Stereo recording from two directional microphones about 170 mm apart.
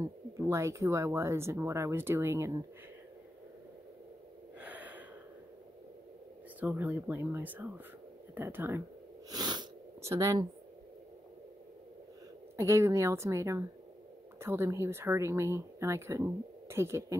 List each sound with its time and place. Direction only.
0.4 s speech: 15° right (ahead or behind)
4.6 s gasp: 10° right (ahead or behind)
6.6 s speech: 10° right (ahead or behind)
9.3 s sniff: 25° right (ahead or behind)
12.5 s speech: 15° right (ahead or behind)